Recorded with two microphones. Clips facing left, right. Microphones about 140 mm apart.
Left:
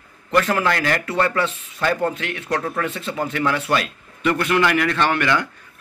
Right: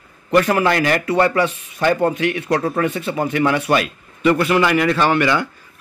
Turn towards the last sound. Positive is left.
turn(degrees=-5)  # may be behind; listen again after turning